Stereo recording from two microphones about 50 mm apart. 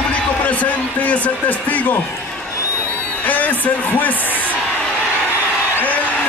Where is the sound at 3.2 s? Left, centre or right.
Left.